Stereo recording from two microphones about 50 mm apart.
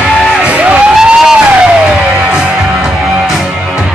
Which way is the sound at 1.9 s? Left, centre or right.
Centre.